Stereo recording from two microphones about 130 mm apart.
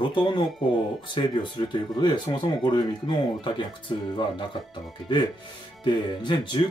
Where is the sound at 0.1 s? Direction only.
40° left (ahead or behind).